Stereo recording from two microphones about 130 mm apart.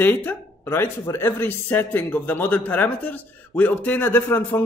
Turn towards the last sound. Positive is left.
turn(degrees=15)  # may be behind; listen again after turning